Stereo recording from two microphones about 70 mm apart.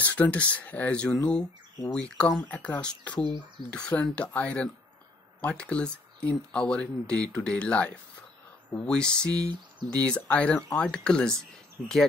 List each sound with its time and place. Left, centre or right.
0.0 s speech: left
9.3 s a sound: right
9.8 s speech: centre